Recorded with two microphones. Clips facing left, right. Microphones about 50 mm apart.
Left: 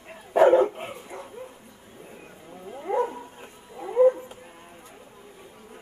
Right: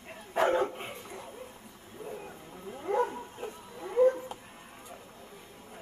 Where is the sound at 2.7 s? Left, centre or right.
Centre.